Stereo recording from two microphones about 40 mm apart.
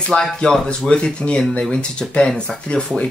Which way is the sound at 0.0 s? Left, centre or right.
Centre.